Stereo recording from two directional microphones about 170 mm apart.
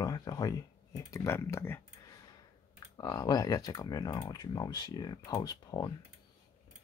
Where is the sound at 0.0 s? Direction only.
20° left (ahead or behind).